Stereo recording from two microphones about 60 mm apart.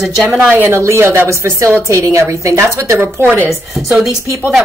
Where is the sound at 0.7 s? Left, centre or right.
Right.